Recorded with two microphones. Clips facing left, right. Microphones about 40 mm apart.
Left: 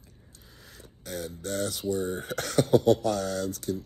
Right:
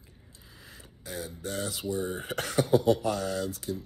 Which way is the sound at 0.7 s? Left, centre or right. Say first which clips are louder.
Left 2 dB; right.